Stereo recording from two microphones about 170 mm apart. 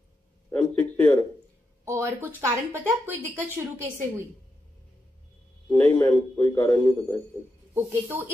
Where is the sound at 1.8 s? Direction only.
15° right (ahead or behind).